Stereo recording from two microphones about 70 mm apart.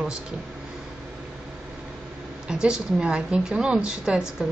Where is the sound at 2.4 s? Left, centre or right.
Centre.